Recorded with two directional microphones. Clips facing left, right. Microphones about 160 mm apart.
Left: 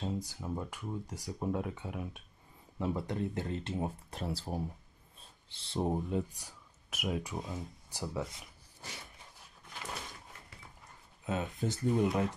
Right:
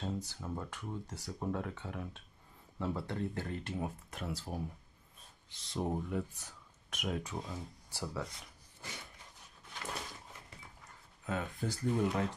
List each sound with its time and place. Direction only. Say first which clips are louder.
0.0 s speech: left 2 dB; 15° left (ahead or behind)
6.3 s speech: even; 10° left (ahead or behind)
11.2 s speech: left 3 dB; 20° left (ahead or behind)